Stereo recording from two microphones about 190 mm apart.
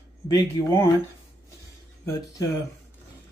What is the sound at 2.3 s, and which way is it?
Speech, 15° left (ahead or behind).